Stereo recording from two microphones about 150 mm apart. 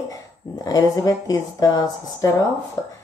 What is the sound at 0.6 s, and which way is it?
Speech, 25° left (ahead or behind).